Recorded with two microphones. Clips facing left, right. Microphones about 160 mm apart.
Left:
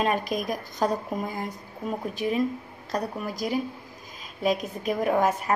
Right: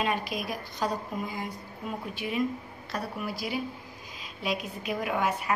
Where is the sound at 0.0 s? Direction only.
45° left (ahead or behind).